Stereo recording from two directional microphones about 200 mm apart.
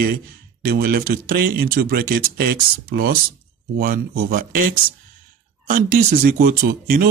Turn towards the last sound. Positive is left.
turn(degrees=-45)  # may be behind; listen again after turning